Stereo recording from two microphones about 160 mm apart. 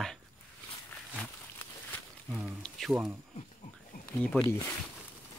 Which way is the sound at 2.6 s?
Centre (ahead or behind).